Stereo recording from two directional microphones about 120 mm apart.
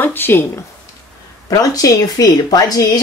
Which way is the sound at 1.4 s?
30° left (ahead or behind).